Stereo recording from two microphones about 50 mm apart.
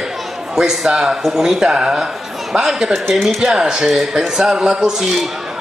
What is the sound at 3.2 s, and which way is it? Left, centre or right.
A man's voice, centre.